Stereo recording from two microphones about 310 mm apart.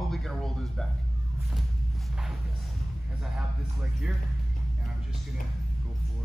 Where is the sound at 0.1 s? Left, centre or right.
Centre.